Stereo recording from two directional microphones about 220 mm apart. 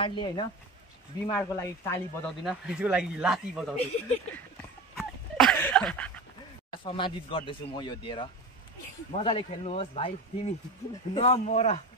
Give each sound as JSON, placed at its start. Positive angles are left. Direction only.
{"t": 0.0, "sound": "speech", "side_deg": 20}
{"t": 2.4, "sound": "speech", "side_deg": -5}
{"t": 4.9, "sound": "a sound", "side_deg": 0}
{"t": 6.8, "sound": "speech", "side_deg": 20}